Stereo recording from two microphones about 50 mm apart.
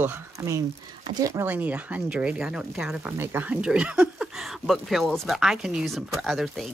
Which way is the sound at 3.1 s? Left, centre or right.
Right.